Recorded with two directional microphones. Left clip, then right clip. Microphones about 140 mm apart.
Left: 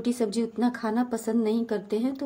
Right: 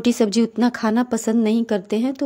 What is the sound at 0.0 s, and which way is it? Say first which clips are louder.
A woman's voice: right 9 dB; 75° right (ahead or behind).